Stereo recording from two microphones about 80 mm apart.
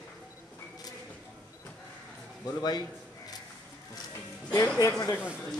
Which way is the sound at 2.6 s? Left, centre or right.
Left.